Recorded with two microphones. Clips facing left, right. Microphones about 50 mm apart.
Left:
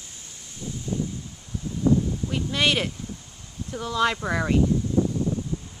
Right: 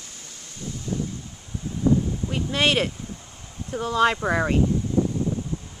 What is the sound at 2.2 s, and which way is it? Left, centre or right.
Speech, centre.